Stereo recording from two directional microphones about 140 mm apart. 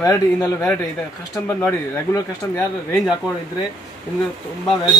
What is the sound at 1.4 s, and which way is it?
Speech, 15° left (ahead or behind).